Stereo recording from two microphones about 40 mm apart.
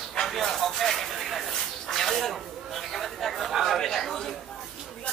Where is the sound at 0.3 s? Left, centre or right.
Centre.